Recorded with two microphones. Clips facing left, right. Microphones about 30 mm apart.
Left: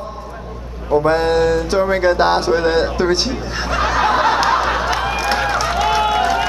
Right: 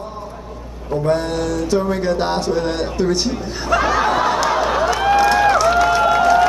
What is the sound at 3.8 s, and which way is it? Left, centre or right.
Snicker, centre.